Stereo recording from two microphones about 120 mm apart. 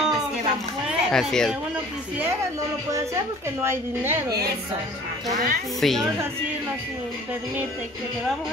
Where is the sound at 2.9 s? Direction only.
25° right (ahead or behind).